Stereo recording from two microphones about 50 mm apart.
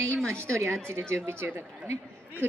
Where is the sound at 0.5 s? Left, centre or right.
Right.